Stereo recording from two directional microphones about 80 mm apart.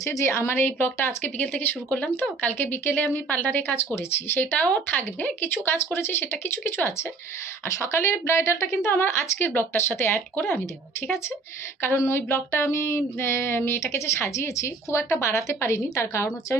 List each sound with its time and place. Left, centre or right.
0.0 s speech: left
0.3 s speech: left
11.8 s speech: left